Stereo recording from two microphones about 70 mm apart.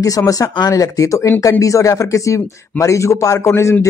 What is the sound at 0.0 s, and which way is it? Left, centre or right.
Speech, left.